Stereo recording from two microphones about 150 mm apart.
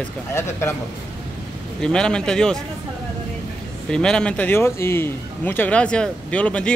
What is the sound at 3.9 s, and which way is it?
A man's voice, 5° left (ahead or behind).